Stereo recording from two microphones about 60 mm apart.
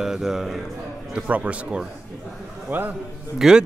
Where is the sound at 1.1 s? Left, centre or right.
Right.